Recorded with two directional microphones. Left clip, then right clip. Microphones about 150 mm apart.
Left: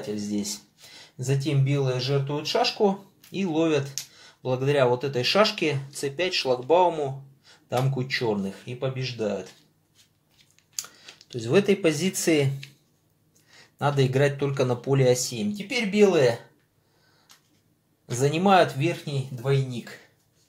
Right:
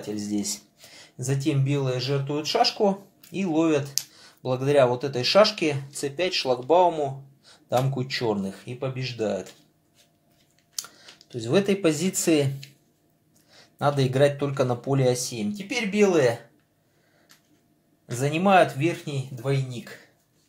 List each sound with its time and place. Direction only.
0.1 s speech: 20° right (ahead or behind)
11.3 s speech: 5° right (ahead or behind)
13.6 s speech: 5° right (ahead or behind)
18.0 s speech: centre (ahead or behind)